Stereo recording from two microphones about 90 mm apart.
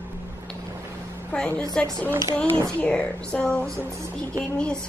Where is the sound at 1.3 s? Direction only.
10° left (ahead or behind).